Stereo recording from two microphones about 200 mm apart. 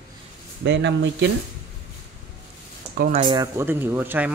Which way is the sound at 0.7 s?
60° right (ahead or behind).